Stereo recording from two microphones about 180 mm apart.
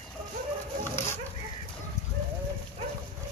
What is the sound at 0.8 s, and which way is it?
Dog, 15° left (ahead or behind).